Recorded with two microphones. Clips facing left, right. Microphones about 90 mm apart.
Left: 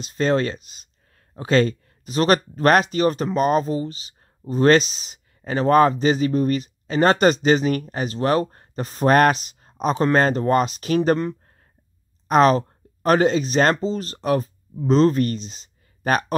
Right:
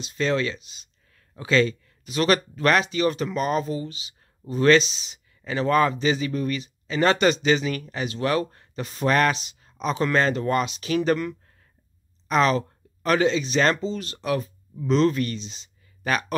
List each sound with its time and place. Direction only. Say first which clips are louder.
0.0 s speech: left 4 dB; 40° left (ahead or behind)